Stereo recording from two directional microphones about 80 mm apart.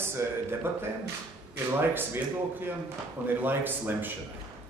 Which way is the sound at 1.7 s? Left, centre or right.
Right.